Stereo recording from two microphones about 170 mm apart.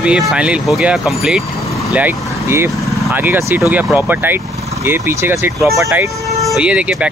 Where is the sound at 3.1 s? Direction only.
10° right (ahead or behind).